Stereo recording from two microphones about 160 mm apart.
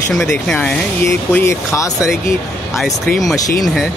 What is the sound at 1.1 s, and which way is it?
Speech, 15° left (ahead or behind).